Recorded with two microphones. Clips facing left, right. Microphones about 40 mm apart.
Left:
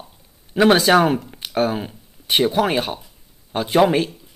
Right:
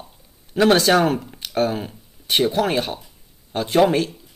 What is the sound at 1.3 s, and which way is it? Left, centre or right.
Speech, centre.